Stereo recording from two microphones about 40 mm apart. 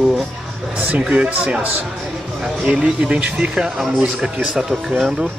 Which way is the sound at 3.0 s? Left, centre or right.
Right.